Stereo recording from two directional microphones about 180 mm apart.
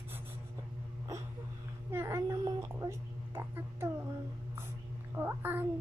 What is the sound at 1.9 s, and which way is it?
A child's voice, 15° right (ahead or behind).